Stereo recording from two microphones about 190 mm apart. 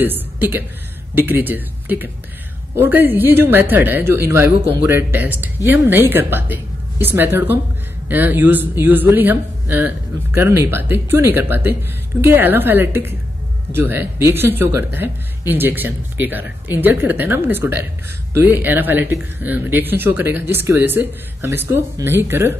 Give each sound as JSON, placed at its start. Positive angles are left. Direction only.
{"t": 0.0, "sound": "speech", "side_deg": -10}